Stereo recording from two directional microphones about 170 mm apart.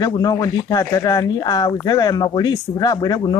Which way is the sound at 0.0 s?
25° left (ahead or behind).